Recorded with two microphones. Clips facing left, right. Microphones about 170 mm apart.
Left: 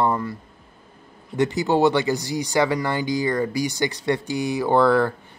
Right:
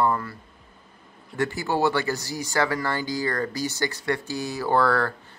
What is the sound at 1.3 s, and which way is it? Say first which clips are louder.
Speech: left 5 dB; 20° left (ahead or behind).